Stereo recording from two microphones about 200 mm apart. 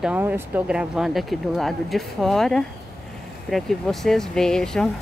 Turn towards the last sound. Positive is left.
turn(degrees=0)  # may be behind; listen again after turning